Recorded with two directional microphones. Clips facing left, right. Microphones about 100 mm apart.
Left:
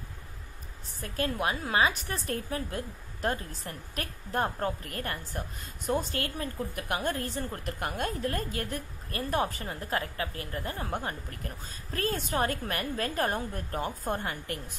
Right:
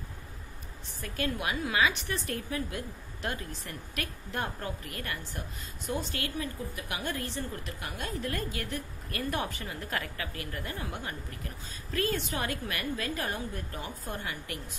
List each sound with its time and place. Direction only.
1.0 s a woman's voice: 40° left (ahead or behind)